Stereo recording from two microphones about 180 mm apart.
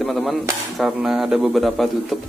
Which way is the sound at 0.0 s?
Centre (ahead or behind).